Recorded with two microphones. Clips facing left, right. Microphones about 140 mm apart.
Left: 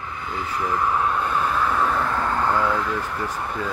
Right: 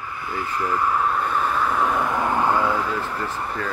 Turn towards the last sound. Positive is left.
turn(degrees=0)  # may be behind; listen again after turning